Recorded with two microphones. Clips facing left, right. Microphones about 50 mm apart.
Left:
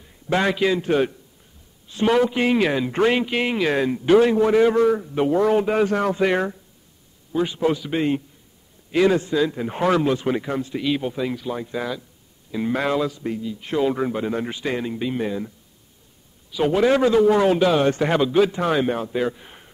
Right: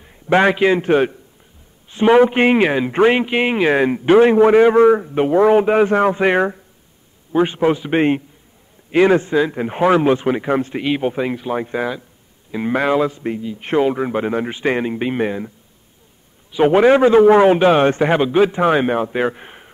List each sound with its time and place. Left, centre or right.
0.0 s a man's voice: right
2.7 s a man's voice: right
7.9 s a man's voice: right
8.9 s a man's voice: right
10.5 s a man's voice: right
13.6 s a man's voice: right
13.8 s a man's voice: right
16.5 s a man's voice: right